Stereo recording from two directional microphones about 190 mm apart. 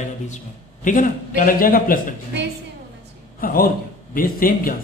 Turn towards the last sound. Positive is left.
turn(degrees=50)  # may be behind; listen again after turning